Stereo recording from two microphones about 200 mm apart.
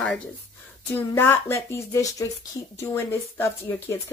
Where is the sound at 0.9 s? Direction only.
10° left (ahead or behind).